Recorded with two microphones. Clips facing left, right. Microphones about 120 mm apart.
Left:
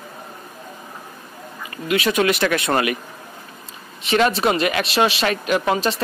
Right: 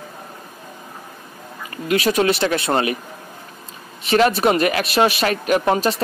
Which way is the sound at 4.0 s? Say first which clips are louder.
Right 2 dB; 40° right (ahead or behind).